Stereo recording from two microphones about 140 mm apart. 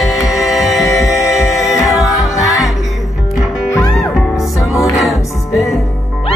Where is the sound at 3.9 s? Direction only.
Centre (ahead or behind).